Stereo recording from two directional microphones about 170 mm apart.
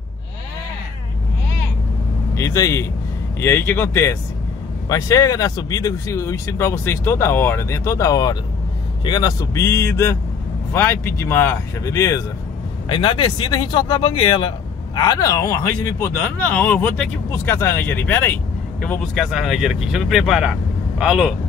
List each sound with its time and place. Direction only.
2.3 s a man's voice: 20° left (ahead or behind); by 21.4 s 5° right (ahead or behind)